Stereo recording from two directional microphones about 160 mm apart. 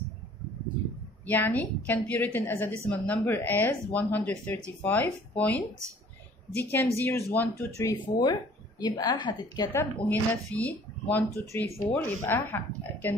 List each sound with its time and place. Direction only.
1.2 s a woman's voice: 10° left (ahead or behind); by 9.7 s 30° left (ahead or behind)
9.7 s a woman's voice: 15° left (ahead or behind)